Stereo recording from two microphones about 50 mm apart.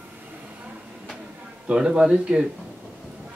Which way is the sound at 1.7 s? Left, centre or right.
Centre.